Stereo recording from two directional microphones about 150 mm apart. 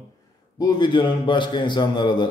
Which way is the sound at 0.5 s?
30° left (ahead or behind).